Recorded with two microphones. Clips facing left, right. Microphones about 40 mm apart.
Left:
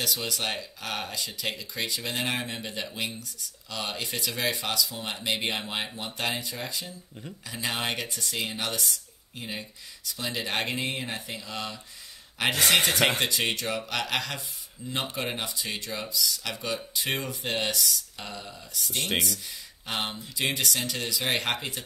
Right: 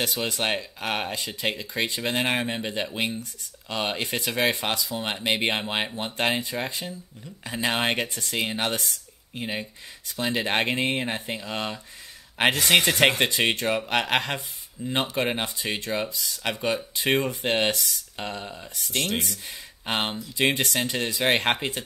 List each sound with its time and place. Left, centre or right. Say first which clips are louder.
0.0 s speech: right 4 dB; right